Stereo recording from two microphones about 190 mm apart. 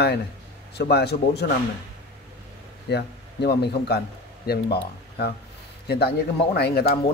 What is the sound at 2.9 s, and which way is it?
Speech, 60° left (ahead or behind).